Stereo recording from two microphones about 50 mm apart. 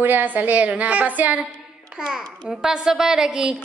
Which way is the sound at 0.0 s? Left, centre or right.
Right.